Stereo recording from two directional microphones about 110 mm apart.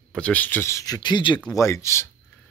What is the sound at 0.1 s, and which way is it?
Speech, 10° left (ahead or behind).